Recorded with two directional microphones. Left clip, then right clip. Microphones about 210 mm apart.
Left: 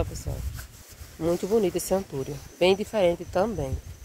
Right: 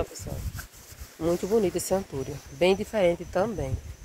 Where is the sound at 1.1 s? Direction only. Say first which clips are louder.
Left 1 dB; centre (ahead or behind).